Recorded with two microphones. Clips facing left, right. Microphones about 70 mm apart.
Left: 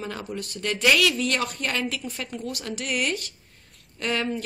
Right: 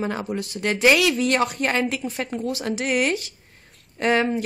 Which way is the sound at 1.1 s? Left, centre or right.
Right.